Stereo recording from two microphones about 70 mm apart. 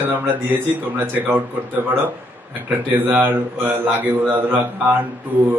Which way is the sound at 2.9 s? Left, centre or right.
Right.